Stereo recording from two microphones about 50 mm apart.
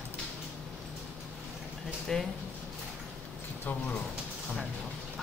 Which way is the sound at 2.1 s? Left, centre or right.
Centre.